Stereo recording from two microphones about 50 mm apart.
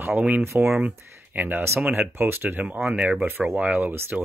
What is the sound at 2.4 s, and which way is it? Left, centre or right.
Speech, right.